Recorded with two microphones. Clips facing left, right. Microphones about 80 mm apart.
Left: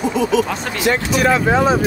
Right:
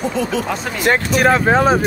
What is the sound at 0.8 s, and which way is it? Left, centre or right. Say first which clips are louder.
Speech: right 2 dB; right.